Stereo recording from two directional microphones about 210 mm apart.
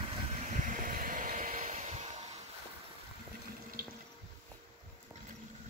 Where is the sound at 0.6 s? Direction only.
40° right (ahead or behind).